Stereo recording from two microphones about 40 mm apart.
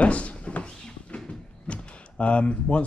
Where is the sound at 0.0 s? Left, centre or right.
Left.